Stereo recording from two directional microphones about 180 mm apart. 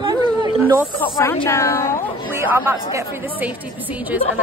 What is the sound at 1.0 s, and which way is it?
A woman's voice, 15° left (ahead or behind).